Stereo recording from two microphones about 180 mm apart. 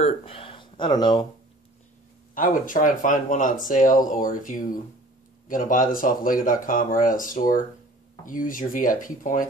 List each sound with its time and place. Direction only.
0.0 s speech: 30° left (ahead or behind)
2.3 s speech: 50° left (ahead or behind)